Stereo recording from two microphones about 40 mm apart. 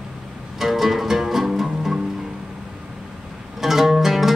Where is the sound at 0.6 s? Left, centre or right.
Centre.